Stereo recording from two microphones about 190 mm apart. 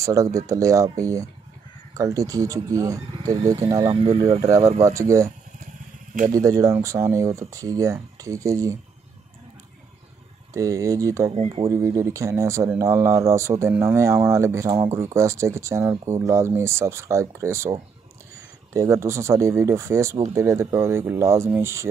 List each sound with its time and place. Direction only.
0.0 s speech: 15° right (ahead or behind)
4.8 s speech: 15° right (ahead or behind)
6.3 s speech: 15° right (ahead or behind)
10.5 s speech: 15° right (ahead or behind)
11.3 s speech: 35° right (ahead or behind)
11.7 s speech: 15° right (ahead or behind)